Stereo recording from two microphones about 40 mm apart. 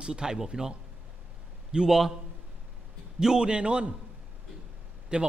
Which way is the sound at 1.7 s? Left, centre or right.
Centre.